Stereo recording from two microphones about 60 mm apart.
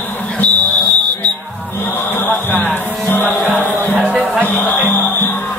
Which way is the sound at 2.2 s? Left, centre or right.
Left.